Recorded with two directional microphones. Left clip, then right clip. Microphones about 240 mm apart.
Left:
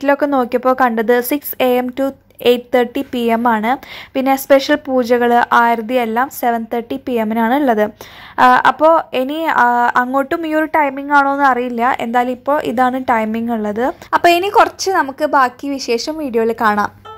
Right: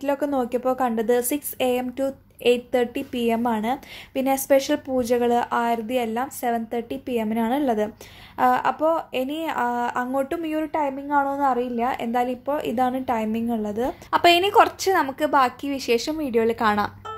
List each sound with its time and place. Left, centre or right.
0.0 s a woman's voice: centre